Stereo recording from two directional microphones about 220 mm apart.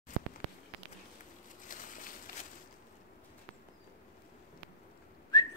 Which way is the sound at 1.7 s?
40° left (ahead or behind).